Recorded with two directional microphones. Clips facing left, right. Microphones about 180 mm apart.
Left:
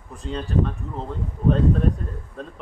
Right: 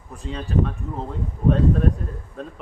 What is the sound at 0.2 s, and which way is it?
Speech, centre (ahead or behind).